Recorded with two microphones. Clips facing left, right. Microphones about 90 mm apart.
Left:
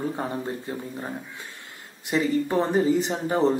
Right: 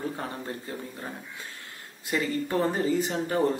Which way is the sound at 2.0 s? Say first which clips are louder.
Left 5 dB; 20° left (ahead or behind).